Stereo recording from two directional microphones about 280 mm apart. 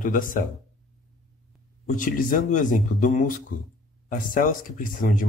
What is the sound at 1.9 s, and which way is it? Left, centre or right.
Speech, left.